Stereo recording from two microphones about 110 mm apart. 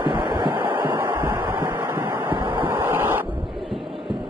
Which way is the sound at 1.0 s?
45° right (ahead or behind).